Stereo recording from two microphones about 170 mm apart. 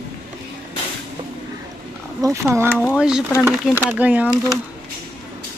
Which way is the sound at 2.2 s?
15° right (ahead or behind).